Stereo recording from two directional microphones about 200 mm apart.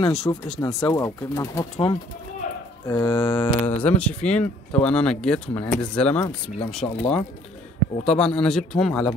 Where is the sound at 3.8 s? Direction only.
5° left (ahead or behind).